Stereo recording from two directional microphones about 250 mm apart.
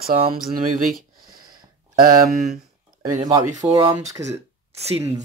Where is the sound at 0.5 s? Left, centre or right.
Right.